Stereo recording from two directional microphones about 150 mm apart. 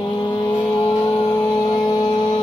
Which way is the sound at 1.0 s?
25° left (ahead or behind).